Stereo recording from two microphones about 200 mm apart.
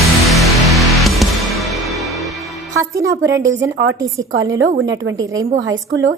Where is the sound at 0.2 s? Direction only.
Centre (ahead or behind).